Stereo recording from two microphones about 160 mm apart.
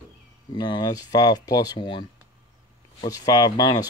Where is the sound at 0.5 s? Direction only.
25° left (ahead or behind).